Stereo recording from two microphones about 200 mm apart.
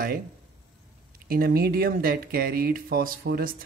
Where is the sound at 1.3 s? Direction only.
50° right (ahead or behind).